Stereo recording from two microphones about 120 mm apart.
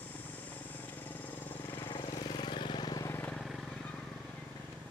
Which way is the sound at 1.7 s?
40° left (ahead or behind).